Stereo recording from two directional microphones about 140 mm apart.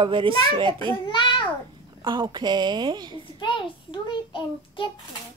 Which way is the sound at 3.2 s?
35° left (ahead or behind).